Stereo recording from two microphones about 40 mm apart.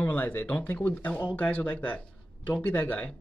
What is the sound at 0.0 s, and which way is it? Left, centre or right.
Speech, left.